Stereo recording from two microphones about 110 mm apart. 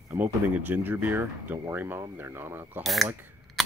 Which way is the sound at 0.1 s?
15° right (ahead or behind).